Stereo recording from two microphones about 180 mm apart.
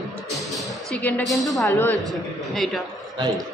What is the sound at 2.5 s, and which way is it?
Speech, centre (ahead or behind).